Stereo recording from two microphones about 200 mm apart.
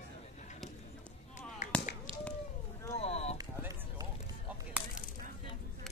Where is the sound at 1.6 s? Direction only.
35° left (ahead or behind).